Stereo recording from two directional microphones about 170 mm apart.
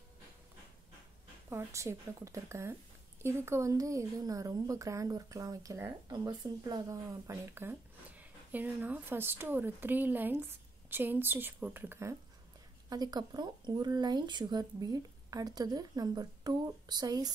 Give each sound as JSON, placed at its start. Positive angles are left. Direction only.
{"t": 1.5, "sound": "a woman's voice", "side_deg": -15}